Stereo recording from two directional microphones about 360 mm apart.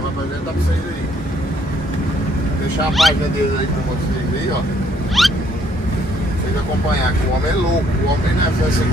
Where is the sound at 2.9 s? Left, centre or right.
Centre.